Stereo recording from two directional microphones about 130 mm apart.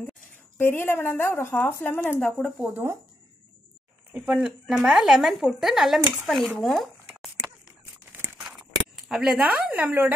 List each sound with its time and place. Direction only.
0.6 s a woman's voice: 15° left (ahead or behind)
2.7 s speech: 20° right (ahead or behind)
4.1 s speech: 5° right (ahead or behind)
8.4 s a sound: 5° right (ahead or behind)
9.1 s a woman's voice: 5° right (ahead or behind)